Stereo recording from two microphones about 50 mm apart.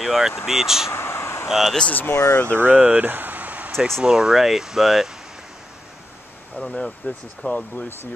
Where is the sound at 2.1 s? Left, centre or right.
Left.